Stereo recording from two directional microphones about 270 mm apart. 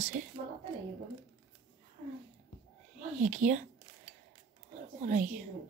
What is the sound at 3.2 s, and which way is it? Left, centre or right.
Speech, right.